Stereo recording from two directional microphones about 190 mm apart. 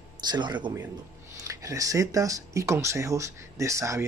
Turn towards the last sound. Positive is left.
turn(degrees=-15)  # may be behind; listen again after turning